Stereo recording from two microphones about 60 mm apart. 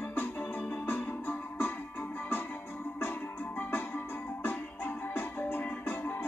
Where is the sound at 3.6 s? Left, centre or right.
Left.